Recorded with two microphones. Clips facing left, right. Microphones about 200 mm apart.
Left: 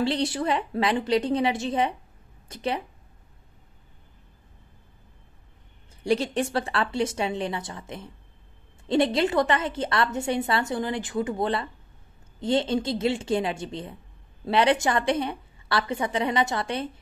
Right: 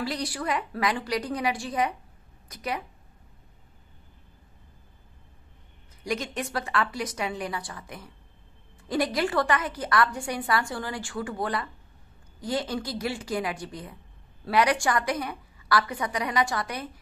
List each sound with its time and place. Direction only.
0.0 s a woman's voice: 25° left (ahead or behind)
6.0 s a woman's voice: 30° left (ahead or behind)